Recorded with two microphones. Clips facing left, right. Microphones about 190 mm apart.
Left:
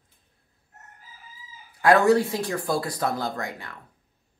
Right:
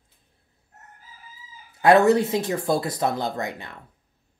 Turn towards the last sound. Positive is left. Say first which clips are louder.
# right 2 dB
turn(degrees=-25)  # may be behind; listen again after turning